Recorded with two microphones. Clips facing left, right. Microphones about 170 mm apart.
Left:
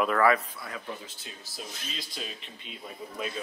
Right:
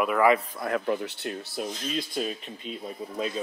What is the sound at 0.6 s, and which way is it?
Speech, 65° right (ahead or behind).